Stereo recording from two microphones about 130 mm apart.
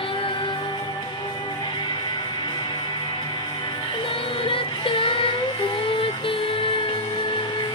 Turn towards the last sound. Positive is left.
turn(degrees=40)  # may be behind; listen again after turning